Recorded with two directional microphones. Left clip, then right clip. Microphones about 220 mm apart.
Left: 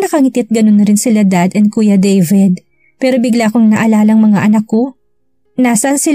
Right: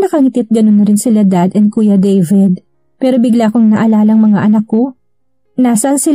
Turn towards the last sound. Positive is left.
turn(degrees=20)  # may be behind; listen again after turning